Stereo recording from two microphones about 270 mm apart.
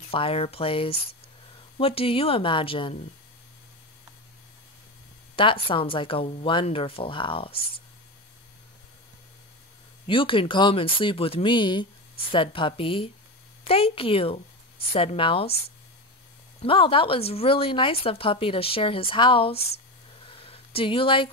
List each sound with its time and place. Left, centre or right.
0.1 s speech: left
5.3 s speech: centre
10.0 s speech: centre
16.6 s speech: centre
20.2 s a sound: centre